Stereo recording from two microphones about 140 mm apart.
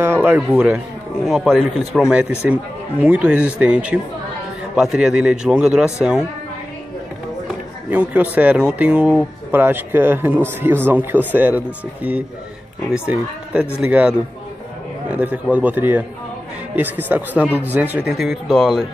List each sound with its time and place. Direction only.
0.0 s a sound: 15° right (ahead or behind)
0.5 s a man's voice: 10° right (ahead or behind)
7.9 s a man's voice: 10° right (ahead or behind)